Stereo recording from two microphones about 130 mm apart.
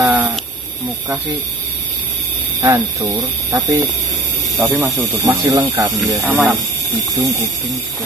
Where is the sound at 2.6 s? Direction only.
25° right (ahead or behind).